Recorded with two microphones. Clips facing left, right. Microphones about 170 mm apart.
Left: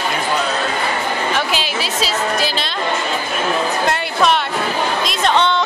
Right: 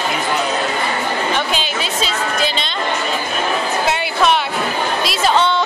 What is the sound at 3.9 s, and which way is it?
Music, centre (ahead or behind).